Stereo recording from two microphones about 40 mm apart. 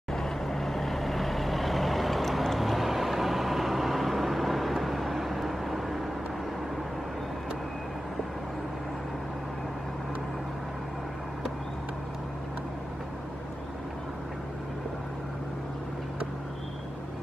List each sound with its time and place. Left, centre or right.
0.1 s vehicle: centre